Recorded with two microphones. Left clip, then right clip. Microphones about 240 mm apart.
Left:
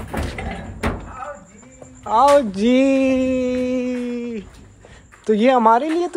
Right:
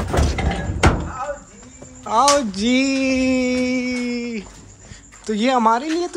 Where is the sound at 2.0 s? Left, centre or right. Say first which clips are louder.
Left 2 dB; centre.